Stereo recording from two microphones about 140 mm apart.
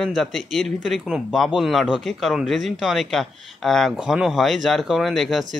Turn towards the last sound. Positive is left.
turn(degrees=0)  # may be behind; listen again after turning